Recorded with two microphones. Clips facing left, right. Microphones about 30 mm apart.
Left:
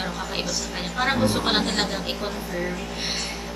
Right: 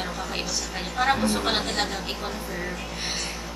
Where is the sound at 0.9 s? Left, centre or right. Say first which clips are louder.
Left 1 dB; centre.